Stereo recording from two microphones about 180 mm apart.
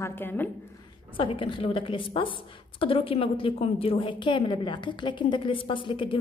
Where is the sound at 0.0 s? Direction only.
10° left (ahead or behind).